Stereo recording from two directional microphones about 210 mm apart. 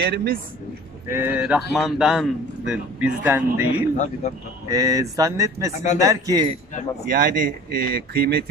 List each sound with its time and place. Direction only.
0.0 s speech: 50° right (ahead or behind)
1.0 s a man's voice: 10° right (ahead or behind)
7.1 s speech: 45° right (ahead or behind)